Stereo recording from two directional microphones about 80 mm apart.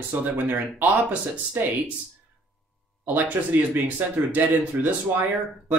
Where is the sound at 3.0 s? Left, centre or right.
Right.